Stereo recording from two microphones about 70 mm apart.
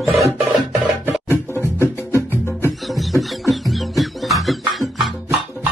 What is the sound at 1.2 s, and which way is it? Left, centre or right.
Music, left.